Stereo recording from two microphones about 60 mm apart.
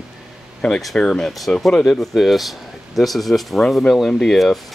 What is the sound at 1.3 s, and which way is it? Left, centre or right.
Speech, centre.